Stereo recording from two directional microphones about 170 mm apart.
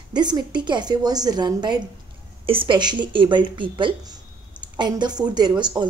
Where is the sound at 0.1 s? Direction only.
25° right (ahead or behind).